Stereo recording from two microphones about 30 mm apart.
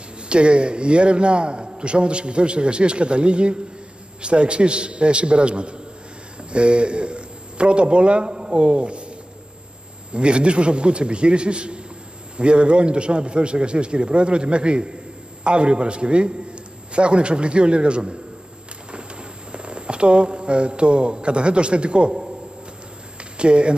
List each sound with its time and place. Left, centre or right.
0.3 s a man's voice: right
10.1 s a man's voice: right
23.3 s speech: right